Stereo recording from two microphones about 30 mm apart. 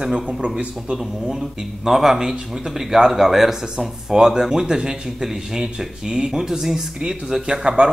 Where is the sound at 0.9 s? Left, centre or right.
Centre.